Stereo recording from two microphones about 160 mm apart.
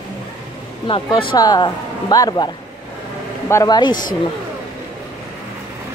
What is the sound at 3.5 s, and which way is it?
Speech, 25° left (ahead or behind).